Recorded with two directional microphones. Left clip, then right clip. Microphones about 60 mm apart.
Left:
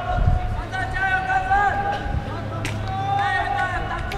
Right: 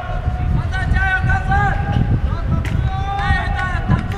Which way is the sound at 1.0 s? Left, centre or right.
Right.